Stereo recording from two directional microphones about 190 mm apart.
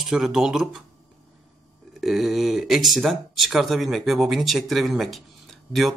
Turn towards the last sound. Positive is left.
turn(degrees=0)  # may be behind; listen again after turning